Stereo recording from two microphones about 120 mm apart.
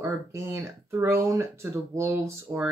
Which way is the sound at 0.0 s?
20° right (ahead or behind).